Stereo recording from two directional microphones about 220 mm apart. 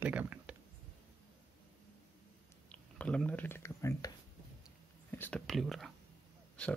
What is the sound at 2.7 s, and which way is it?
Speech, 5° left (ahead or behind).